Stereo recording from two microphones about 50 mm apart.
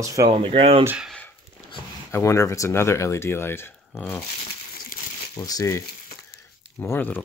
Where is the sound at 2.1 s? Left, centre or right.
Left.